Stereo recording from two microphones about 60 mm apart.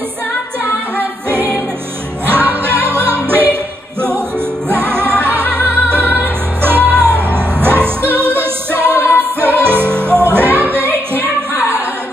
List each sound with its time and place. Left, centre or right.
2.2 s music: right
4.6 s music: right